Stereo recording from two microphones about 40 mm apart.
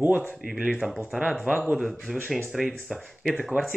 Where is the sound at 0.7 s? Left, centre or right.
Centre.